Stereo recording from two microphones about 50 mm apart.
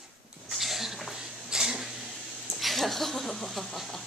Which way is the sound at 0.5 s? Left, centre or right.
Centre.